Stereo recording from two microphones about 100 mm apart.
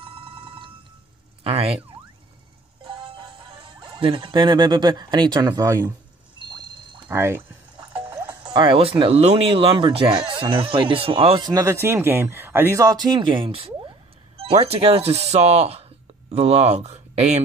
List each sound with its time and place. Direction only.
0.0 s telephone bell ringing: 60° right (ahead or behind)
1.4 s speech: 75° right (ahead or behind)
3.2 s speech: 60° right (ahead or behind); by 5.9 s 30° right (ahead or behind)
6.3 s a sound: 50° right (ahead or behind)
7.1 s speech: 25° right (ahead or behind)
8.5 s speech: 55° right (ahead or behind); by 9.8 s 80° right
9.8 s speech: 55° right (ahead or behind)
11.6 s speech: 25° right (ahead or behind)
12.8 s speech: 45° right (ahead or behind); by 17.3 s 90° right